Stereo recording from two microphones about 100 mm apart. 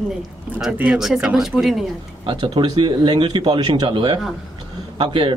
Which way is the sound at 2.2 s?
50° right (ahead or behind).